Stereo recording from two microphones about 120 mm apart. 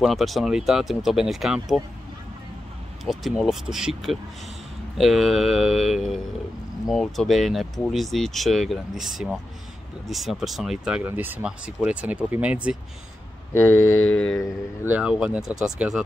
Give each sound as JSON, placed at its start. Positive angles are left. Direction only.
{"t": 0.0, "sound": "speech", "side_deg": 0}
{"t": 3.1, "sound": "speech", "side_deg": 0}
{"t": 11.1, "sound": "speech", "side_deg": -15}
{"t": 13.5, "sound": "speech", "side_deg": 20}
{"t": 14.1, "sound": "mantra", "side_deg": 10}
{"t": 14.9, "sound": "speech", "side_deg": -10}